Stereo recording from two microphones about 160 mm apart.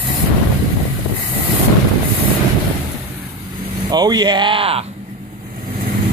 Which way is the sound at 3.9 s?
25° right (ahead or behind).